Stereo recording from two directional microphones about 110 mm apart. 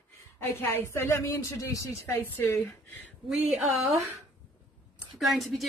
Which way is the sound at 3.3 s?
Centre (ahead or behind).